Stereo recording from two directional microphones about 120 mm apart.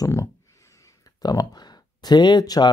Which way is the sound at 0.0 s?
25° left (ahead or behind).